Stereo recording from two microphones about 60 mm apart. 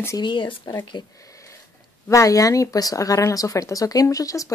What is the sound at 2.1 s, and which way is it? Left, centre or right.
Speech, left.